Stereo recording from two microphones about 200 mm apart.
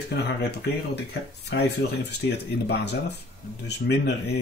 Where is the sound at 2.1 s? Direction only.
55° left (ahead or behind).